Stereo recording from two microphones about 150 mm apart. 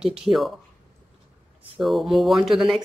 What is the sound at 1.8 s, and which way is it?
Speech, centre (ahead or behind).